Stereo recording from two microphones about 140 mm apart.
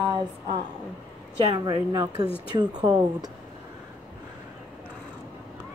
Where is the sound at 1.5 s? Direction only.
30° right (ahead or behind).